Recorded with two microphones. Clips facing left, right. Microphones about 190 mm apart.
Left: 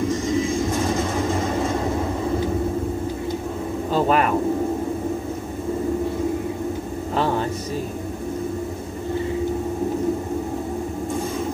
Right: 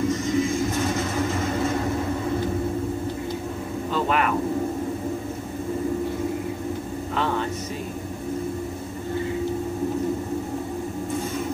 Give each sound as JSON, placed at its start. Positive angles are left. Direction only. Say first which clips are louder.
{"t": 3.9, "sound": "bird", "louder": "left 4 dB", "side_deg": 35}